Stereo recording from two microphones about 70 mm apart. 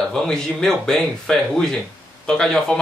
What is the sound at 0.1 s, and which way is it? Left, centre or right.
Speech, centre.